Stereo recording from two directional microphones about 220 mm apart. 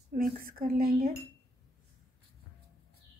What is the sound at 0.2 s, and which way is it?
Speech, 40° right (ahead or behind).